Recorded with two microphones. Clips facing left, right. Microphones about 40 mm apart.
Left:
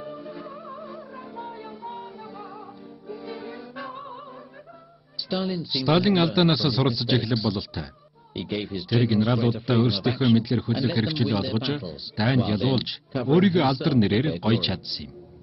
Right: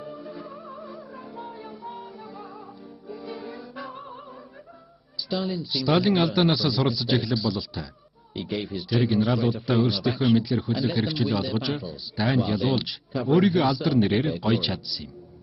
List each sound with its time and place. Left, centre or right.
0.2 s music: centre
1.7 s music: centre
2.0 s music: centre
5.1 s speech: centre
13.9 s speech: centre